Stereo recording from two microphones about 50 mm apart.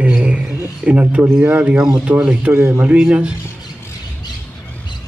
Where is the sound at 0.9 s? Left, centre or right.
Right.